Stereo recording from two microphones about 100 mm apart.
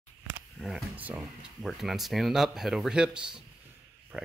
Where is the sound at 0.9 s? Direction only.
15° right (ahead or behind).